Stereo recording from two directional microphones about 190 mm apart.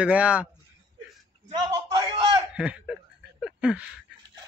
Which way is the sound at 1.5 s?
25° right (ahead or behind).